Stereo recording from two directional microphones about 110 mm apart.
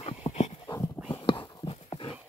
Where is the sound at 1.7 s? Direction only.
55° left (ahead or behind).